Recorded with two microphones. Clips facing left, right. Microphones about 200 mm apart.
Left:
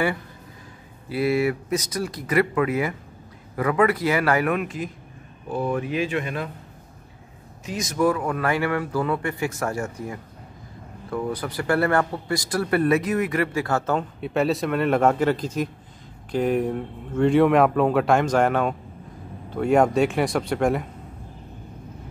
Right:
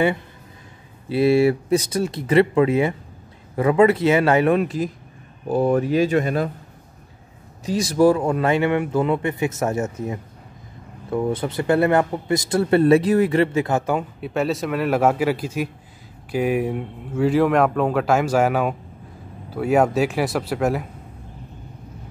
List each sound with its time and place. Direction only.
1.0 s speech: 25° right (ahead or behind)
7.6 s speech: 35° right (ahead or behind); by 14.0 s 15° right (ahead or behind)
14.2 s a man's voice: centre (ahead or behind)